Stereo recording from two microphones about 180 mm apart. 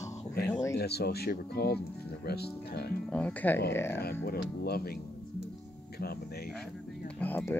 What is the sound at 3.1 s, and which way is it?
Speech, 10° left (ahead or behind).